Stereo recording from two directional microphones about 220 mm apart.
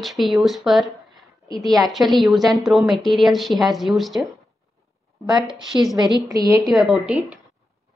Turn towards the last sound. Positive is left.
turn(degrees=-5)  # may be behind; listen again after turning